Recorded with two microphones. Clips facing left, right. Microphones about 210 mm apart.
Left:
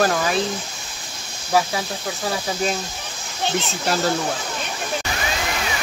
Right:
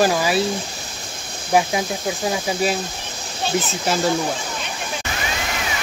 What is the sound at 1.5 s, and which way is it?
Speech, 20° right (ahead or behind).